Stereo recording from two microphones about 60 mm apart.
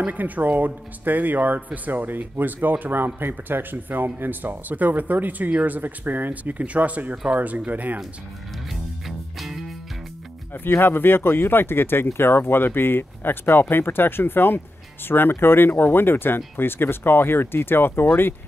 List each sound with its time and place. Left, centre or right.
0.0 s speech: right
9.0 s music: centre
10.5 s speech: left